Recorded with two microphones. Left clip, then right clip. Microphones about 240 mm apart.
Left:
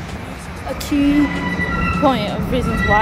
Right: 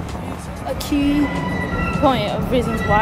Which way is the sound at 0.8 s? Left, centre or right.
Centre.